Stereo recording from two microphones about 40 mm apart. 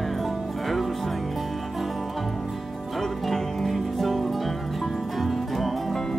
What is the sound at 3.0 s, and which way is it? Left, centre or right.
Music, centre.